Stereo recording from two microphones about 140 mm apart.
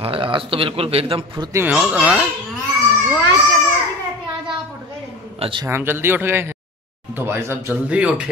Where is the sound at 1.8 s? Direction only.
5° right (ahead or behind).